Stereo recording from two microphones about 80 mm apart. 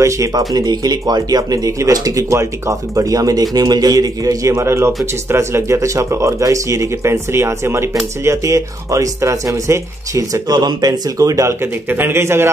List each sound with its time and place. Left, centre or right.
0.6 s speech: right
10.5 s speech: right
11.6 s speech: right